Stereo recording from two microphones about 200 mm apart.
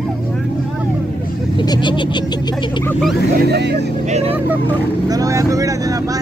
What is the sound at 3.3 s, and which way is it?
Vehicle, 55° right (ahead or behind).